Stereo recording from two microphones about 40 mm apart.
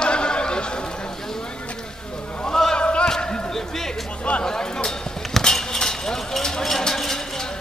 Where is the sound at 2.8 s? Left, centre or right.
Left; by 3.9 s centre.